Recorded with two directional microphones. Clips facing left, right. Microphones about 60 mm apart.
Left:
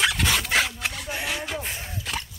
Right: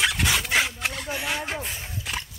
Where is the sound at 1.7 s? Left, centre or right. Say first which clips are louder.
Left 1 dB; left.